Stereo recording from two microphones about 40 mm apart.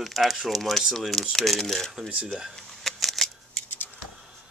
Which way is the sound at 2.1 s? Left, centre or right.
Right.